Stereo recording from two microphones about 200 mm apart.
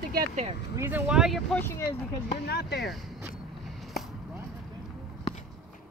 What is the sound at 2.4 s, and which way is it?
Speech, 55° left (ahead or behind).